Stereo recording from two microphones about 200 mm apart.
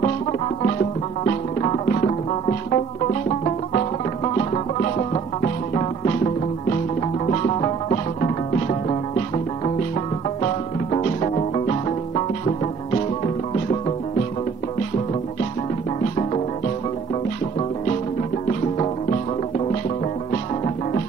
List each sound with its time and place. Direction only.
1.2 s music: 35° left (ahead or behind)
10.4 s music: 30° left (ahead or behind)